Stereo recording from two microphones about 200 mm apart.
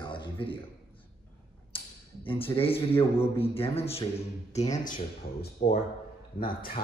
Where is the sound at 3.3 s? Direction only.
30° left (ahead or behind).